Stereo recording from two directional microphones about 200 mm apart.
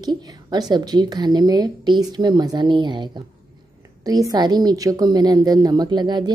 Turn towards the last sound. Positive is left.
turn(degrees=-20)  # may be behind; listen again after turning